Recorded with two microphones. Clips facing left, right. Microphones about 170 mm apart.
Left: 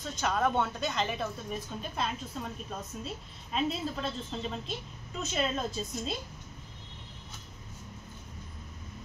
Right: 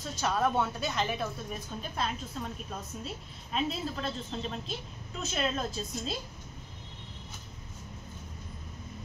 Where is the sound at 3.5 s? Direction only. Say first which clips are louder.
Left 1 dB; centre (ahead or behind).